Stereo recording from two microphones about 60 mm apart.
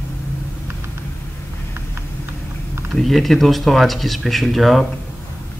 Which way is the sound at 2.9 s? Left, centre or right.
Centre.